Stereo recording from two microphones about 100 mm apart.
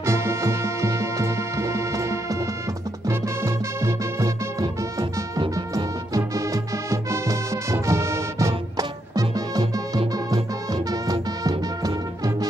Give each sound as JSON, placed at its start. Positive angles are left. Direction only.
{"t": 0.0, "sound": "music", "side_deg": -25}
{"t": 6.1, "sound": "music", "side_deg": -35}